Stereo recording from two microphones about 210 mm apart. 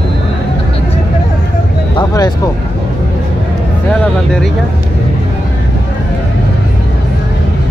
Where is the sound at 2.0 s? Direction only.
20° left (ahead or behind).